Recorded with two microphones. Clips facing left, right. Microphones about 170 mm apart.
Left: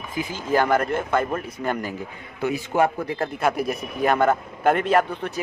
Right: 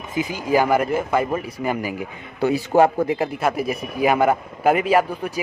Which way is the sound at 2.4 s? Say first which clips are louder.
Right 5 dB; 35° right (ahead or behind).